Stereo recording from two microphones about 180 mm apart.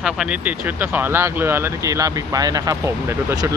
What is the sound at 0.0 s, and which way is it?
Speech, 5° right (ahead or behind).